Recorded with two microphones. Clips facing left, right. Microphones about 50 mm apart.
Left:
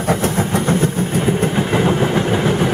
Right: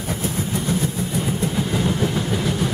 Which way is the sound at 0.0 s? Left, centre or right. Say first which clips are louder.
Left 8 dB; left.